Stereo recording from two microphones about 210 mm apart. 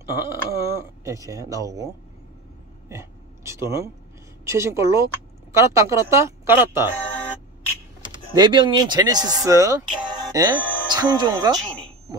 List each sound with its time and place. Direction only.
0.1 s speech: 10° right (ahead or behind)
2.9 s speech: 15° right (ahead or behind)
8.4 s a man's voice: 20° right (ahead or behind)